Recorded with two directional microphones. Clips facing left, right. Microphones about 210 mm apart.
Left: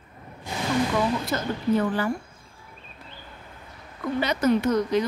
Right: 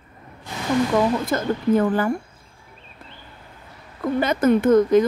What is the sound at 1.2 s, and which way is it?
Speech, 50° right (ahead or behind).